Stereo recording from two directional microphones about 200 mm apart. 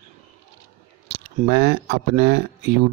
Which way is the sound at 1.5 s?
50° right (ahead or behind).